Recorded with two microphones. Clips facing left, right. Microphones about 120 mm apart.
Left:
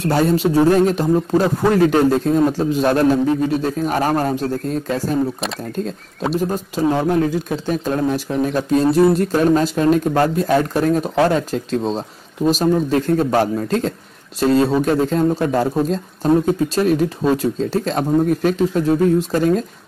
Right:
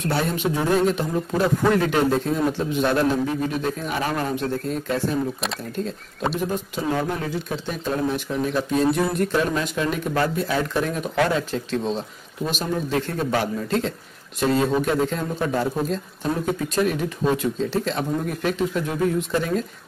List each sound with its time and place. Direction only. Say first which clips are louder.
0.1 s speech: left 9 dB; 40° left (ahead or behind)
6.5 s speech: left 6 dB; 40° left (ahead or behind)